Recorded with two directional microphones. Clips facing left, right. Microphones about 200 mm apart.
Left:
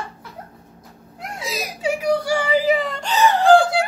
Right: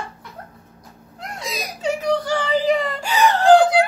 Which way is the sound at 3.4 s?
20° right (ahead or behind).